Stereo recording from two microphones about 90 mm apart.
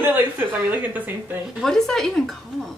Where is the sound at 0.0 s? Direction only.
20° right (ahead or behind).